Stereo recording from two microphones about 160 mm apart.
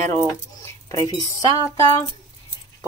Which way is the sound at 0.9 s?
25° left (ahead or behind).